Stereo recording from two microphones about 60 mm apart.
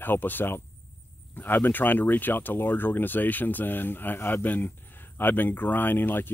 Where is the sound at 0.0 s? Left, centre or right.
Left.